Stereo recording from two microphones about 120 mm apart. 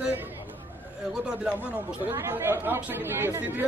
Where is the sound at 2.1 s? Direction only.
20° right (ahead or behind).